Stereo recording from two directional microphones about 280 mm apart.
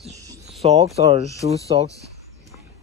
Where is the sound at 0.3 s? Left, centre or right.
Right.